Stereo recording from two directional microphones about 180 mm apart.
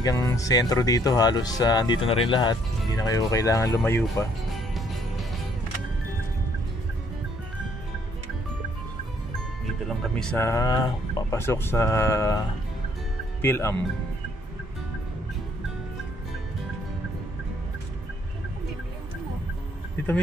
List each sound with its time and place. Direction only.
0.0 s speech: 20° left (ahead or behind)
4.6 s music: centre (ahead or behind)
10.1 s speech: 5° left (ahead or behind)
10.4 s speech: 20° left (ahead or behind)